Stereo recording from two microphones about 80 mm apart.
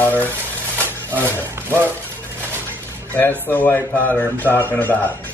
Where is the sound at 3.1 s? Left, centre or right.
Left.